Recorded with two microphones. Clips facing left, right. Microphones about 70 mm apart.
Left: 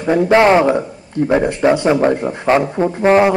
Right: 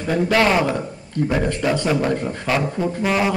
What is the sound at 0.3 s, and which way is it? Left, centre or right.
A man's voice, left.